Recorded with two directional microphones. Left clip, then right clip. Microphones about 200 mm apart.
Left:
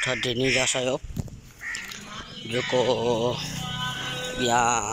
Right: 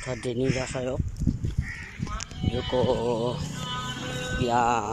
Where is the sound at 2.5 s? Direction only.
Centre (ahead or behind).